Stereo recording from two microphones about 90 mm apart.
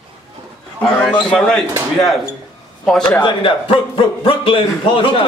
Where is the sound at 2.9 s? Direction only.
5° left (ahead or behind).